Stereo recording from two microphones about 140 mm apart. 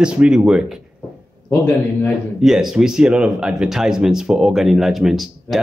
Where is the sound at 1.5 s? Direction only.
15° left (ahead or behind).